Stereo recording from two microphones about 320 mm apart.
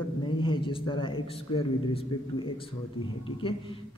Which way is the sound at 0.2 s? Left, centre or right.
Centre.